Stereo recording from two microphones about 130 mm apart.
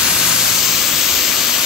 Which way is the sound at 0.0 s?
5° right (ahead or behind).